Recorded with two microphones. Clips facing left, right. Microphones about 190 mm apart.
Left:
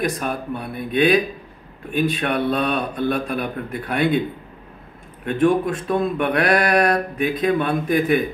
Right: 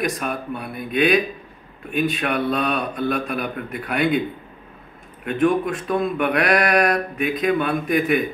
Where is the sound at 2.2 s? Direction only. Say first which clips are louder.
Left 1 dB; 30° left (ahead or behind).